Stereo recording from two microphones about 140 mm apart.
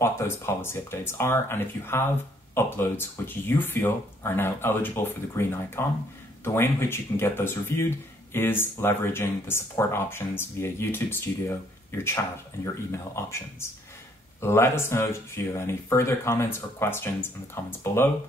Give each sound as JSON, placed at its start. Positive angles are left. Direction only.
{"t": 0.0, "sound": "speech", "side_deg": 20}